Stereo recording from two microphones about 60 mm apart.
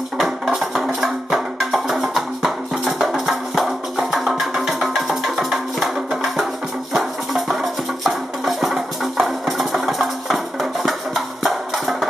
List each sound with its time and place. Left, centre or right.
0.2 s music: centre
6.9 s music: centre